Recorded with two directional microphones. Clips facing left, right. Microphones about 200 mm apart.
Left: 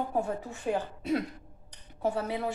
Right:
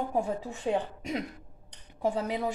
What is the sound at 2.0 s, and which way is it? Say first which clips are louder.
Speech: right 1 dB; 15° right (ahead or behind).